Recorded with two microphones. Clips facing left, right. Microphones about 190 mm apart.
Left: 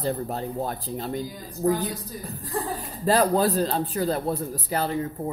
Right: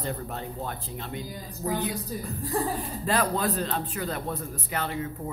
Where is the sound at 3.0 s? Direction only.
35° left (ahead or behind).